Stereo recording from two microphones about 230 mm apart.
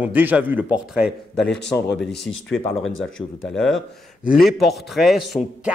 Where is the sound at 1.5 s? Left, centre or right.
Left.